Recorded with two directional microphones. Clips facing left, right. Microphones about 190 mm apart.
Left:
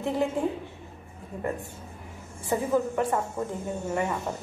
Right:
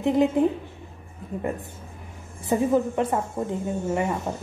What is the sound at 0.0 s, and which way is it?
Speech, 20° right (ahead or behind).